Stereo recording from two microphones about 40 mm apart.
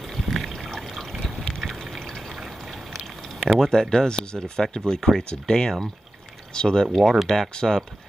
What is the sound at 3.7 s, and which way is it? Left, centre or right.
Speech, centre.